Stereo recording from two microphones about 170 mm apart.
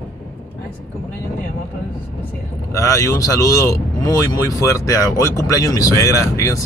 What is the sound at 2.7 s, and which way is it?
Speech, 20° left (ahead or behind).